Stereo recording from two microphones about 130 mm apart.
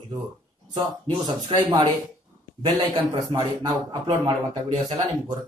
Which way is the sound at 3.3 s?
30° right (ahead or behind).